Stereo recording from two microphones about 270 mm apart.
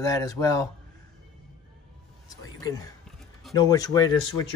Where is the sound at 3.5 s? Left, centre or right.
Centre.